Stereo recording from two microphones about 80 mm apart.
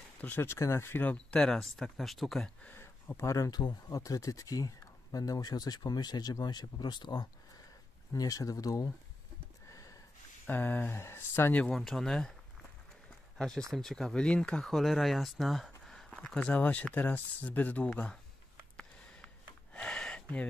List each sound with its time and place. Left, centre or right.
0.2 s speech: left
1.0 s speech: centre
2.6 s speech: left
3.4 s speech: left
8.1 s speech: left
9.7 s sniff: left
10.4 s speech: left
11.7 s speech: centre
13.4 s speech: centre
16.1 s speech: centre
18.8 s a sound: centre